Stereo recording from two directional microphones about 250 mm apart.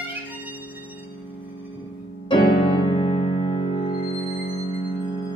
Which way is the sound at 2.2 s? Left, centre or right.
Centre.